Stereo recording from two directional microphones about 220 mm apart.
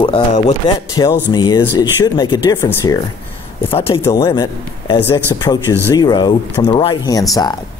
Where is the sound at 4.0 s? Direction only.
15° left (ahead or behind).